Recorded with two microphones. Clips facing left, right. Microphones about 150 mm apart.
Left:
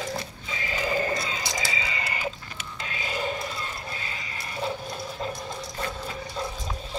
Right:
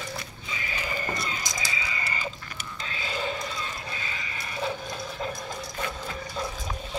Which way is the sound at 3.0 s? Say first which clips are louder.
Left 1 dB; 5° left (ahead or behind).